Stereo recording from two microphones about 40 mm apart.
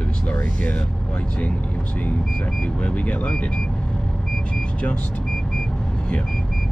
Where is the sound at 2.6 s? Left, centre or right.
Left.